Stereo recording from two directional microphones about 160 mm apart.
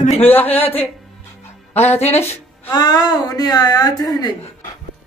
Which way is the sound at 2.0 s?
45° left (ahead or behind).